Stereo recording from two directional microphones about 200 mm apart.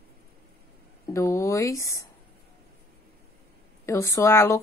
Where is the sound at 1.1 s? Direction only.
15° left (ahead or behind).